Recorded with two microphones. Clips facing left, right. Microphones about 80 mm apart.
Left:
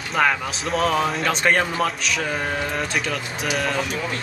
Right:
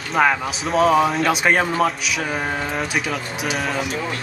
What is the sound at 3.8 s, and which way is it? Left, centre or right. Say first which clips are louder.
Speech: right 1 dB; right.